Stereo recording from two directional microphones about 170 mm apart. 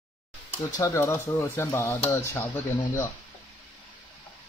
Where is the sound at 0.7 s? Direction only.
20° left (ahead or behind).